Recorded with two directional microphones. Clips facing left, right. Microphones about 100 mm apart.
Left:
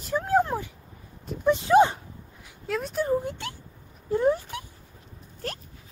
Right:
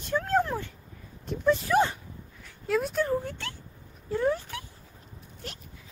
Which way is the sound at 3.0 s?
15° left (ahead or behind).